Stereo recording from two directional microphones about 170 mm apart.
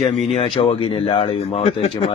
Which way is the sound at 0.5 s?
35° left (ahead or behind).